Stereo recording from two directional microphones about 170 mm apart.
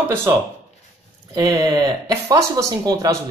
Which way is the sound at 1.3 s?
20° right (ahead or behind).